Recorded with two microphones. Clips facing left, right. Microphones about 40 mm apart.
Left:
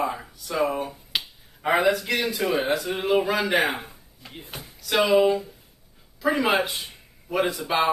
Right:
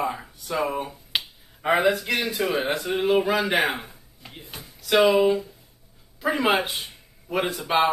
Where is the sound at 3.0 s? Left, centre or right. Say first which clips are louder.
Right 3 dB; centre.